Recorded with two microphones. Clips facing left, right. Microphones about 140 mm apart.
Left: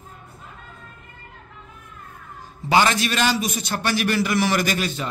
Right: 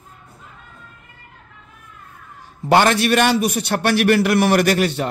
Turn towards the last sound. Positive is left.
turn(degrees=-65)  # may be behind; listen again after turning